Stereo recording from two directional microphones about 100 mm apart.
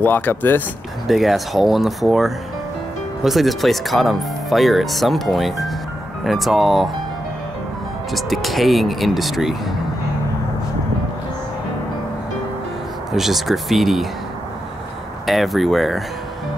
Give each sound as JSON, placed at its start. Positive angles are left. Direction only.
{"t": 0.0, "sound": "speech", "side_deg": 20}
{"t": 1.0, "sound": "speech", "side_deg": 0}
{"t": 8.1, "sound": "speech", "side_deg": 0}
{"t": 13.1, "sound": "speech", "side_deg": 0}
{"t": 15.2, "sound": "speech", "side_deg": 0}